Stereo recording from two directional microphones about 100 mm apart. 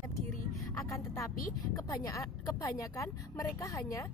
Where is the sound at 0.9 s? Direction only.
30° left (ahead or behind).